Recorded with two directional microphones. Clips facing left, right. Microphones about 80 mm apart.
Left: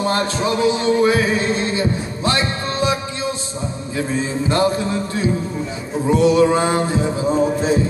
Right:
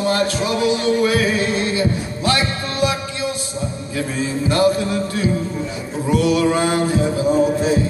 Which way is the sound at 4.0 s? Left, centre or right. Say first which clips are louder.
Left 1 dB; left.